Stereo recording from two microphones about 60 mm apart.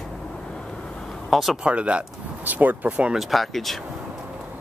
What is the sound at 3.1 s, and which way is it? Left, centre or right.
Speech, centre.